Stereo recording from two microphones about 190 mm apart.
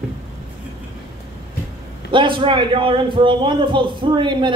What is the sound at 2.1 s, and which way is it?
A man's voice, 25° right (ahead or behind).